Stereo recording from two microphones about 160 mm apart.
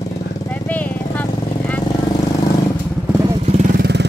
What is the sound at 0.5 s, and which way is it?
Vehicle, 10° left (ahead or behind).